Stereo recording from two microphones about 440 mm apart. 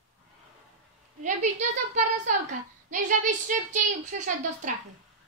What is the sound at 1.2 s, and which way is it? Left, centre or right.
A woman's voice, centre.